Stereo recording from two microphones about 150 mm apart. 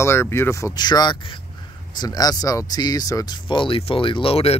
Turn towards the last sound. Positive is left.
turn(degrees=40)  # may be behind; listen again after turning